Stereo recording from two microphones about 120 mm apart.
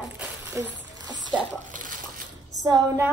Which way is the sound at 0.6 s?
20° right (ahead or behind).